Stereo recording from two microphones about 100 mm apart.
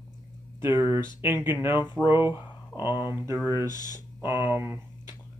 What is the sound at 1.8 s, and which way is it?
Speech, 45° left (ahead or behind).